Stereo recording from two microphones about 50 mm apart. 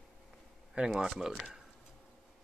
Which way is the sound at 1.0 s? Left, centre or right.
Centre.